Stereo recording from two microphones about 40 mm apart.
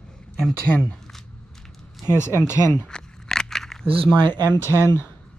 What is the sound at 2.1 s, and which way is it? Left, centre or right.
Speech, left.